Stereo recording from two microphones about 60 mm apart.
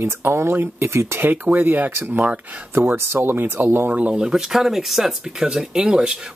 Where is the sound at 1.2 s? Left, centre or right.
Right.